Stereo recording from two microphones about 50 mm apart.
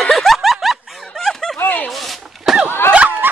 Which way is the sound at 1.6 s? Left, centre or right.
Left.